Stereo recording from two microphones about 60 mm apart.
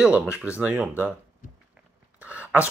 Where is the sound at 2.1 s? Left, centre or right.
Right.